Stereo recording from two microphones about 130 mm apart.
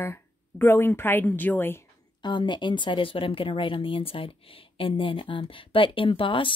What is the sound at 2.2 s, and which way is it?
Speech, 35° left (ahead or behind).